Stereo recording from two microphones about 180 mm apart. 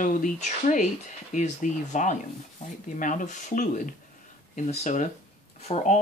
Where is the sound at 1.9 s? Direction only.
45° left (ahead or behind).